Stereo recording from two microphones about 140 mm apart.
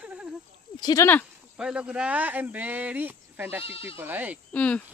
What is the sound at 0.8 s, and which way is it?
Speech, 25° left (ahead or behind).